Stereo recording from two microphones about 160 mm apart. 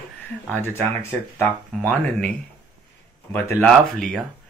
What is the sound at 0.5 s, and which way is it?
Speech, 15° left (ahead or behind).